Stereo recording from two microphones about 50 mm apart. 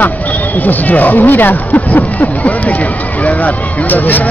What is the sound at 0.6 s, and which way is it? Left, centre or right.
Speech, left.